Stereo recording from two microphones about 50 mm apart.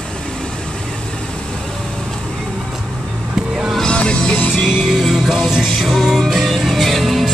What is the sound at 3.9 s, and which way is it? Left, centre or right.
Music, left.